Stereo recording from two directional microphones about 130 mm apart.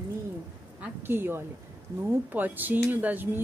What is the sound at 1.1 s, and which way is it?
Speech, 15° right (ahead or behind).